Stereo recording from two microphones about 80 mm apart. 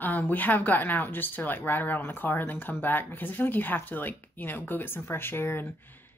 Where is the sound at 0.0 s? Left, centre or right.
Left.